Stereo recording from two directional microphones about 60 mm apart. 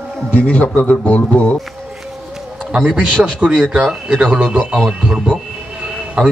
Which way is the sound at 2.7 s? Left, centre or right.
Centre.